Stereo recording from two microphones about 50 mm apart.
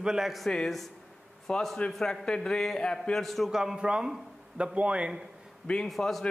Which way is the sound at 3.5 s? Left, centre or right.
Centre.